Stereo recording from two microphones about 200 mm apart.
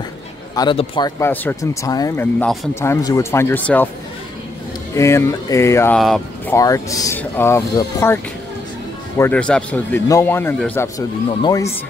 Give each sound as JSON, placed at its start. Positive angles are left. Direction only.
{"t": 0.6, "sound": "a man's voice", "side_deg": 25}
{"t": 1.2, "sound": "speech", "side_deg": 10}
{"t": 2.4, "sound": "speech", "side_deg": 0}
{"t": 2.7, "sound": "speech", "side_deg": 15}
{"t": 4.9, "sound": "speech", "side_deg": 15}
{"t": 5.9, "sound": "speech", "side_deg": 0}
{"t": 6.5, "sound": "speech", "side_deg": 15}
{"t": 9.2, "sound": "speech", "side_deg": 5}